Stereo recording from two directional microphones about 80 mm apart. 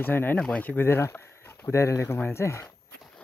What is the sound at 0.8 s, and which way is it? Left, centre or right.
Speech, left.